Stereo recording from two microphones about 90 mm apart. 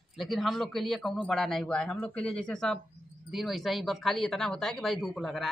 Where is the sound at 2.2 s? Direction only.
10° left (ahead or behind).